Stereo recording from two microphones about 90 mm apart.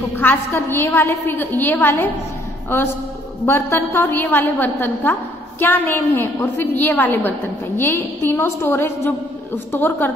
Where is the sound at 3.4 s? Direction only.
25° left (ahead or behind).